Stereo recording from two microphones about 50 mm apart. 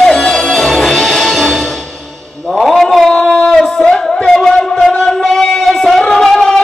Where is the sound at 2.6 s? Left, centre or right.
Centre.